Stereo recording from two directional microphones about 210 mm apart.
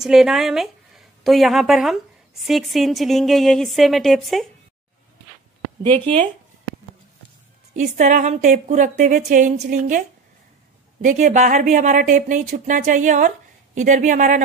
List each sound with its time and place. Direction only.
0.0 s a woman's voice: centre (ahead or behind)
7.7 s speech: 35° right (ahead or behind)